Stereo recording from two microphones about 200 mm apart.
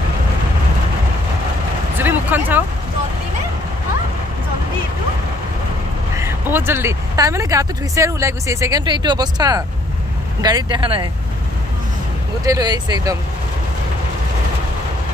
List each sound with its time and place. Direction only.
2.0 s a sound: 10° right (ahead or behind)
6.1 s speech: 10° right (ahead or behind)
12.4 s speech: 20° right (ahead or behind)